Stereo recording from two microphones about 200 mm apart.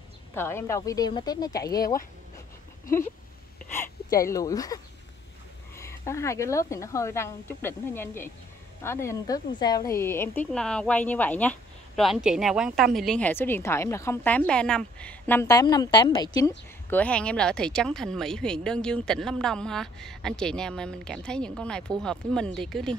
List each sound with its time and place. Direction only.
0.3 s speech: 10° left (ahead or behind)
4.2 s speech: 15° left (ahead or behind)
5.8 s speech: 15° left (ahead or behind)
12.0 s speech: 5° right (ahead or behind); by 17.0 s 15° left (ahead or behind)
17.0 s speech: 5° left (ahead or behind)